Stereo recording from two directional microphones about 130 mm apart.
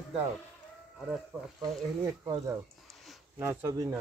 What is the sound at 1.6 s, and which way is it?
Speech, 25° right (ahead or behind).